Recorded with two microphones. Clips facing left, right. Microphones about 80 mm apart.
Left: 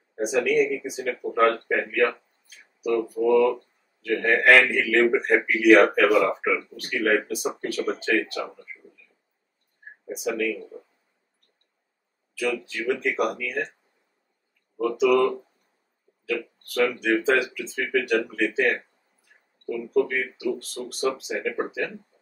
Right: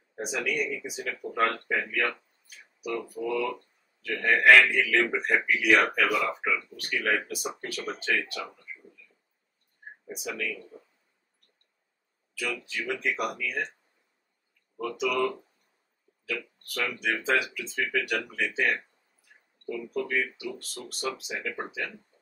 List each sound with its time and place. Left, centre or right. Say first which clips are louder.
0.2 s a man's voice: left 9 dB; centre
10.1 s a man's voice: left 9 dB; centre
10.7 s speech: left 7 dB; centre
12.4 s a man's voice: left 6 dB; centre
14.8 s a man's voice: left 8 dB; centre